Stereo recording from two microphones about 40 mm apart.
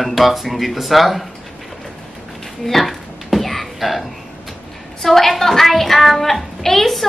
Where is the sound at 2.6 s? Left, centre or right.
Centre.